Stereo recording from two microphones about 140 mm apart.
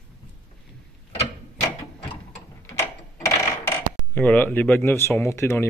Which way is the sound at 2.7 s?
20° left (ahead or behind).